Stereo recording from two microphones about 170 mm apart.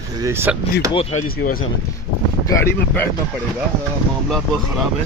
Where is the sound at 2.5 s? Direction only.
15° left (ahead or behind).